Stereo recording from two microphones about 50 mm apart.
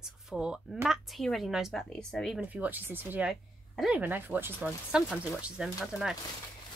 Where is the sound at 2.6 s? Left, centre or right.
Right.